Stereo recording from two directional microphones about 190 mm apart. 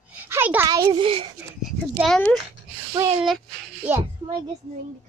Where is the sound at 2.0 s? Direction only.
Centre (ahead or behind).